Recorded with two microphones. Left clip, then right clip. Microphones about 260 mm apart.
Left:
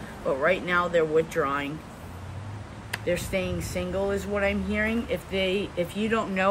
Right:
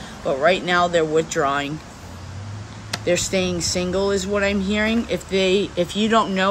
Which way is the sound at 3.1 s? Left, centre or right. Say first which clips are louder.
Right 7 dB; centre.